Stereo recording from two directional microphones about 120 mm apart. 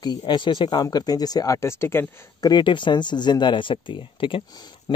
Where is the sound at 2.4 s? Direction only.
40° left (ahead or behind).